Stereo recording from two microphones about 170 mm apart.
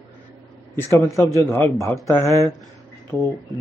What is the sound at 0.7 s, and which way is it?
A man's voice, 15° left (ahead or behind).